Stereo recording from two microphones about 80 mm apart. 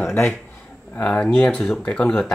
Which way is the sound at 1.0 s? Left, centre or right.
Centre.